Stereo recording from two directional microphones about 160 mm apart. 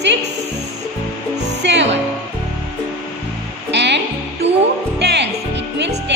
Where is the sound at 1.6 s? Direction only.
90° right.